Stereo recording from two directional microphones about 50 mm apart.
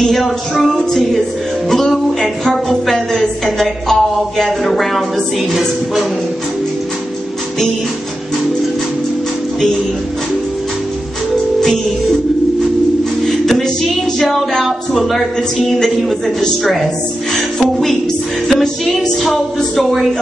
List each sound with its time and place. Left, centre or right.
0.0 s music: centre
2.4 s a sound: centre
14.2 s music: centre
16.3 s music: centre
19.2 s music: centre